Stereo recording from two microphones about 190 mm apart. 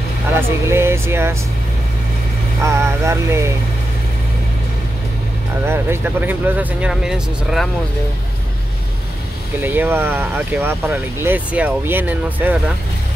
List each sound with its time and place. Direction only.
0.3 s speech: 15° right (ahead or behind)
2.6 s speech: 15° right (ahead or behind)
5.7 s speech: 10° right (ahead or behind)
9.6 s speech: 10° right (ahead or behind)